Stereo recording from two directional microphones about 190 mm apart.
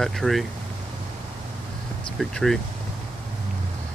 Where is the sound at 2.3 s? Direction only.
5° left (ahead or behind).